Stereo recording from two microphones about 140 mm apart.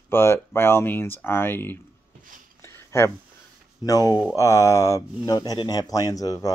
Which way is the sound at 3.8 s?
25° left (ahead or behind).